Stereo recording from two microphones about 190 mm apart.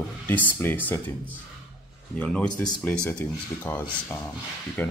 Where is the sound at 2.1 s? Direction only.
5° left (ahead or behind).